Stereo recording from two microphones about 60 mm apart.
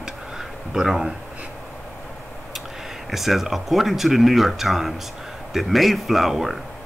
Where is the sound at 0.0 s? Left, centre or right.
Centre.